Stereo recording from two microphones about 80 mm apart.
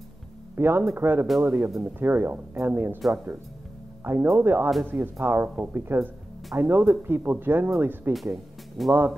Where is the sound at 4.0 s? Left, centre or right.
Right.